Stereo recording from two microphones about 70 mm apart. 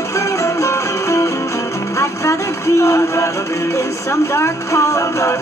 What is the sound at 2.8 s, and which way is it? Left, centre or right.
Speech, left.